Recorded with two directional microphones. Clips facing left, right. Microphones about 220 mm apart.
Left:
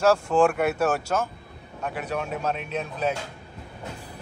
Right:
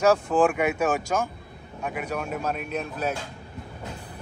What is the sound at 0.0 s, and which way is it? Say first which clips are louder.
A man's voice: even; 10° right (ahead or behind).